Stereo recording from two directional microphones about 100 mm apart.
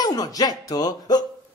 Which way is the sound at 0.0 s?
40° left (ahead or behind).